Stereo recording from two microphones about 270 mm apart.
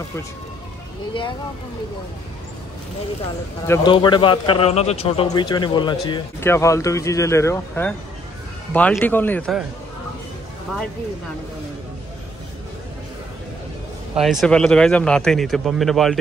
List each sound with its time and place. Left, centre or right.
3.6 s a man's voice: centre
14.1 s speech: centre